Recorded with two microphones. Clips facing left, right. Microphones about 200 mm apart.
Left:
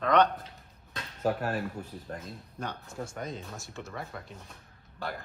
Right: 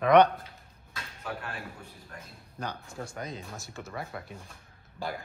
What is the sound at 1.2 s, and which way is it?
Speech, 40° left (ahead or behind).